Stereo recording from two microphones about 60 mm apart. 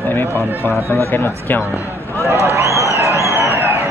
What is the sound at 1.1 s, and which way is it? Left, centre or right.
Speech, left.